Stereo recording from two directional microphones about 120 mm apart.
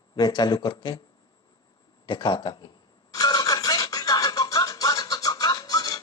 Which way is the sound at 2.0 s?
40° left (ahead or behind).